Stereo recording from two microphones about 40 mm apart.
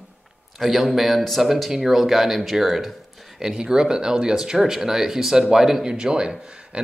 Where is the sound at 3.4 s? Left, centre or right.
Centre.